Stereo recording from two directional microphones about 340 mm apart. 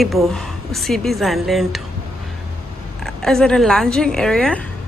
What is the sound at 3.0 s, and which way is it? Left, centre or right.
A woman's voice, centre.